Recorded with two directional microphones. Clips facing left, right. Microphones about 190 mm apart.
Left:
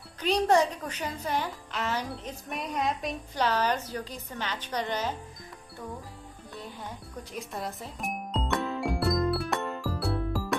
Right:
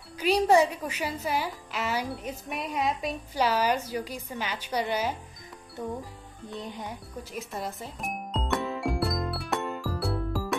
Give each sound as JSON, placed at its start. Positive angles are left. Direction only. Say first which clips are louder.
{"t": 0.2, "sound": "a woman's voice", "louder": "right 2 dB", "side_deg": -10}
{"t": 6.5, "sound": "speech", "louder": "right 4 dB", "side_deg": -20}
{"t": 7.3, "sound": "music", "louder": "right 1 dB", "side_deg": 0}